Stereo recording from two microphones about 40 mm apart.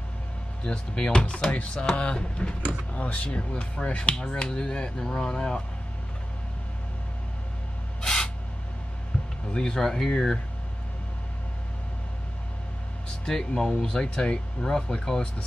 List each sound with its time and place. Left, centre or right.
0.7 s speech: left
8.0 s spray: centre
9.5 s speech: centre
13.2 s speech: centre
14.6 s speech: centre